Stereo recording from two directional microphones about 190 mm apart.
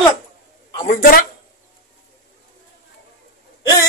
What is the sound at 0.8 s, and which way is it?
Speech, 50° left (ahead or behind).